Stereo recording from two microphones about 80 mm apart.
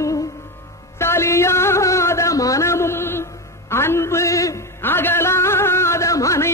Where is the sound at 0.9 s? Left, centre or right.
Left.